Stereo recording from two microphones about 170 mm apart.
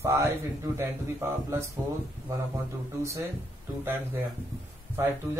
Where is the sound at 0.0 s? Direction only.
15° right (ahead or behind).